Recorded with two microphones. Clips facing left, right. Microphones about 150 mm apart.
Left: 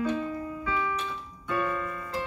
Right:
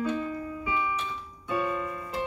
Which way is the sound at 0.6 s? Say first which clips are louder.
Even; 15° right (ahead or behind).